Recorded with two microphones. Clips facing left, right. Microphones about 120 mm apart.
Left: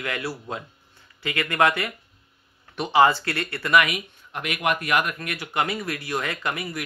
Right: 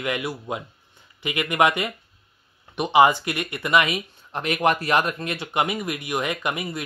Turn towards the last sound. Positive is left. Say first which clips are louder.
# right 2 dB
turn(degrees=-20)  # may be behind; listen again after turning